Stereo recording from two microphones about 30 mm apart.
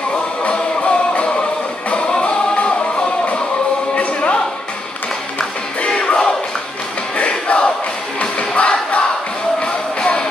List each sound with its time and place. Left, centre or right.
0.4 s music: left
3.9 s music: left
5.8 s music: left
7.2 s battle cry: left
8.2 s music: left